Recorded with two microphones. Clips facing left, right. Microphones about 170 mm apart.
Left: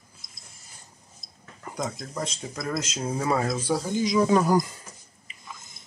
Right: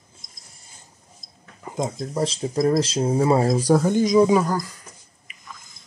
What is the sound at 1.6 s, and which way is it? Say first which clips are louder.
Speech: right 5 dB; 25° right (ahead or behind).